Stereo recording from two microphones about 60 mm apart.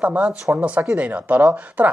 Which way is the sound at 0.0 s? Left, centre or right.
Right.